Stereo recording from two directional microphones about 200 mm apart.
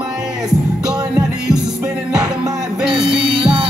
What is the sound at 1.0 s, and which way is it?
Music, 20° right (ahead or behind).